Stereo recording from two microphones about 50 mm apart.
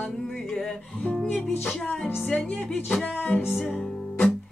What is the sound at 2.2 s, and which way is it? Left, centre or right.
Speech, left.